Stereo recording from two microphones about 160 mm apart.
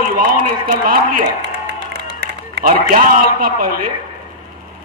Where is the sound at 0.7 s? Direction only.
60° right (ahead or behind).